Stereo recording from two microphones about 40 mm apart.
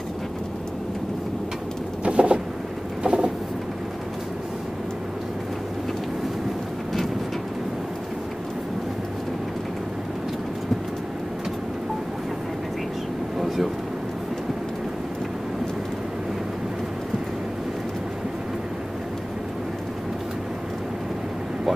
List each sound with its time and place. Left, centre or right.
2.0 s vehicle: right
3.0 s pigeon: right